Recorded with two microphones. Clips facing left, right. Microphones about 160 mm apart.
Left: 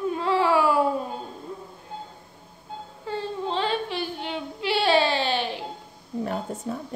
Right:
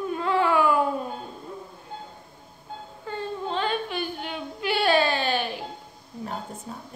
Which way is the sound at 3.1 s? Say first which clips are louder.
Left 2 dB; 30° left (ahead or behind).